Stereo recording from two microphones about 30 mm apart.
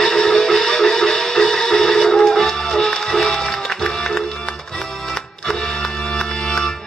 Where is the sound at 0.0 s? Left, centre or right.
Centre.